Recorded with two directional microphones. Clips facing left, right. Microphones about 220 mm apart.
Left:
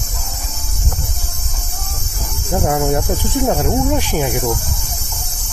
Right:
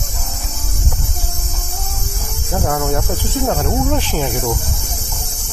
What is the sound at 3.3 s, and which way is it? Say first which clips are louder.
Speech: left 2 dB; 15° left (ahead or behind).